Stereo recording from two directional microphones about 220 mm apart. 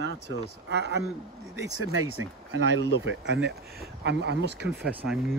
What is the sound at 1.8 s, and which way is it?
Speech, 70° right (ahead or behind).